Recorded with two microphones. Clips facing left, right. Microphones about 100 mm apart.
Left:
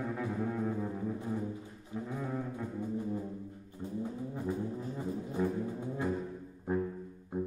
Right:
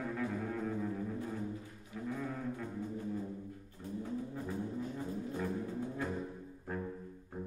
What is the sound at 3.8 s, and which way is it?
Vehicle, 20° left (ahead or behind).